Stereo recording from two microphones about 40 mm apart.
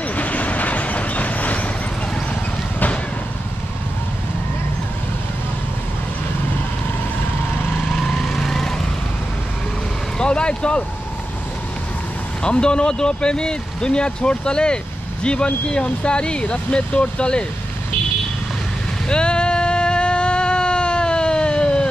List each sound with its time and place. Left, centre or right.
0.1 s vehicle: left
7.9 s lawn mower: centre
8.2 s lawn mower: centre
10.1 s vehicle: left
12.4 s speech: left
19.0 s a sound: left